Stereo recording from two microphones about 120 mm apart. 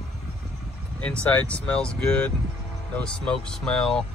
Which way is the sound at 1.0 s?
10° left (ahead or behind).